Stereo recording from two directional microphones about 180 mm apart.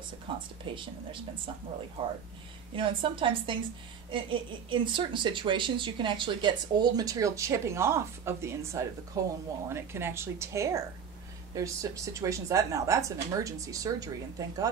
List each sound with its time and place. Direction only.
0.7 s speech: 25° right (ahead or behind)
2.7 s speech: 30° right (ahead or behind)